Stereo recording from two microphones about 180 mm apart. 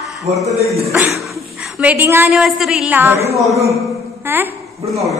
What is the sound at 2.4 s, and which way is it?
Speech, centre (ahead or behind).